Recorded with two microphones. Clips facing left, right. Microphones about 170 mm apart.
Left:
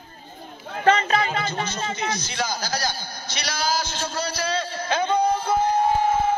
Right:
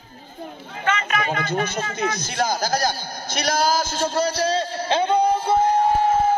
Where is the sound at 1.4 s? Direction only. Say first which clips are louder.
Right 3 dB; 55° right (ahead or behind); by 5.6 s 30° right (ahead or behind).